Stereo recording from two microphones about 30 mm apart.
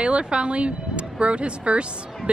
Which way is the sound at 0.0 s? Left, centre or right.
Right.